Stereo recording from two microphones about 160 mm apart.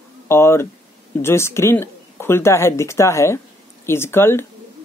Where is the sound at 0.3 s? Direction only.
15° left (ahead or behind).